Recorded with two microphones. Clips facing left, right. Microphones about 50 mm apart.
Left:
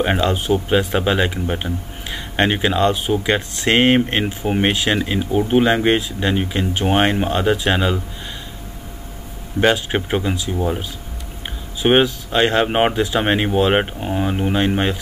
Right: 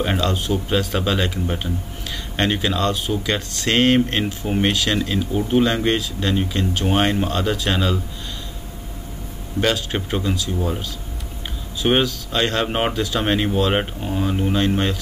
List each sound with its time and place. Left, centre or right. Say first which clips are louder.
0.0 s speech: left 3 dB; left
9.6 s speech: left 4 dB; left